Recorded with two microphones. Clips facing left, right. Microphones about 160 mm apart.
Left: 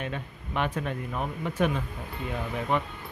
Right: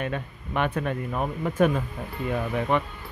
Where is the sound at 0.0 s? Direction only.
55° right (ahead or behind).